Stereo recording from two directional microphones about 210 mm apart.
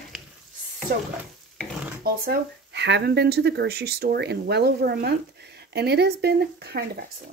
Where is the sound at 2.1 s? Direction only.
50° right (ahead or behind).